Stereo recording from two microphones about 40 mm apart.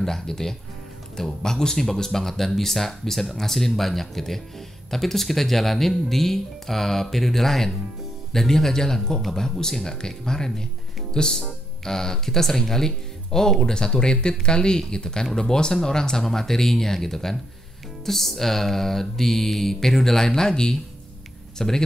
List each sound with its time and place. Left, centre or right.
0.0 s speech: centre